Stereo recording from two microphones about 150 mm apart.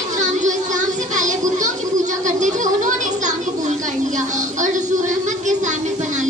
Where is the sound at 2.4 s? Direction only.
55° right (ahead or behind).